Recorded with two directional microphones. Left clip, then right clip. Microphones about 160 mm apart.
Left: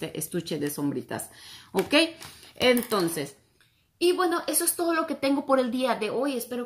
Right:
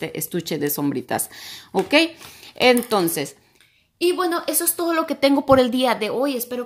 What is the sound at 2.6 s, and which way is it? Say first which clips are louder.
A woman's voice: right 6 dB; 30° right (ahead or behind).